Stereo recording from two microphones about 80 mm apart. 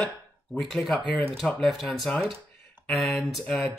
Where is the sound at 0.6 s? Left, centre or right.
Centre.